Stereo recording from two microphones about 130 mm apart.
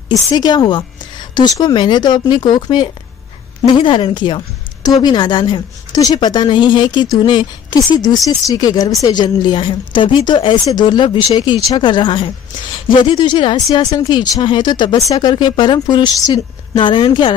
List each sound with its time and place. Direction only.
0.1 s speech: 30° left (ahead or behind)